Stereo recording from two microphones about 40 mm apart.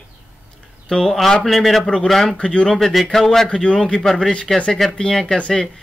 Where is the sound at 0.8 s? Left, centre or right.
Centre.